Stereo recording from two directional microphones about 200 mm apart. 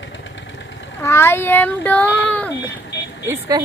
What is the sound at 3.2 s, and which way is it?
Speech, 15° right (ahead or behind).